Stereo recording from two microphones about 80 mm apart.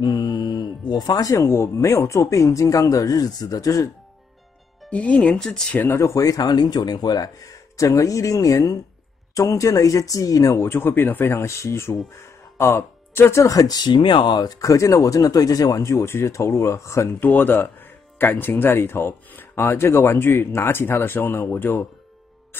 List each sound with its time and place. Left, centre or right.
0.0 s speech: left
4.8 s speech: centre
5.7 s speech: left
10.6 s speech: left
17.2 s speech: left